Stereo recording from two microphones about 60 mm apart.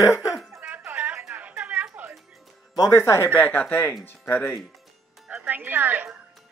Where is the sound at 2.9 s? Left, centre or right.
Left.